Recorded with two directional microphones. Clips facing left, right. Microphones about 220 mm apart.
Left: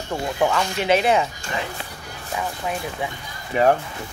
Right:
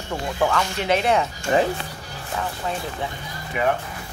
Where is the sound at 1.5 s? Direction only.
35° right (ahead or behind).